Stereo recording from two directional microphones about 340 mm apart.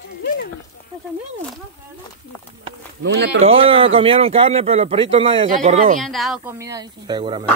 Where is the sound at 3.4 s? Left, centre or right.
Centre.